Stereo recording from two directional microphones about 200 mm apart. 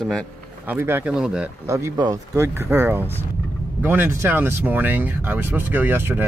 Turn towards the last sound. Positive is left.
turn(degrees=-10)  # may be behind; listen again after turning